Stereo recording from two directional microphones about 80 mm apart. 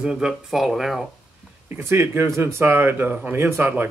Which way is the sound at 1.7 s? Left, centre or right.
Right.